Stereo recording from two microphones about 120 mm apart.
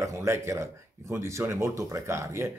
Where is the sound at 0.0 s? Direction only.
25° right (ahead or behind).